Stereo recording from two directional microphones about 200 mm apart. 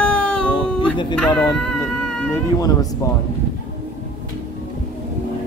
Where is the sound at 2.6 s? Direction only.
15° left (ahead or behind).